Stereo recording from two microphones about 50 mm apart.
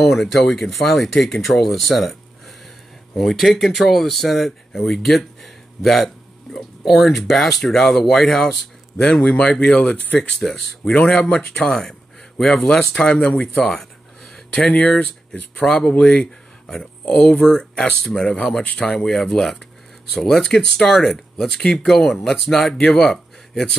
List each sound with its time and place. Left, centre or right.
0.0 s speech: centre
8.9 s speech: centre
10.1 s speech: centre
11.6 s a sound: centre
12.6 s speech: centre
13.7 s a sound: centre
14.7 s speech: left; by 22.6 s centre
22.6 s speech: centre
22.9 s a sound: centre